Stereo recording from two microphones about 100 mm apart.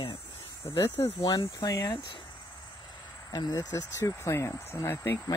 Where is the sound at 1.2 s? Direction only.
40° left (ahead or behind).